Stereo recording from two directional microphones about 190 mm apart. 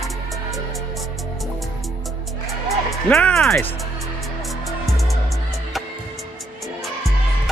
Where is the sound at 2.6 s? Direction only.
5° left (ahead or behind).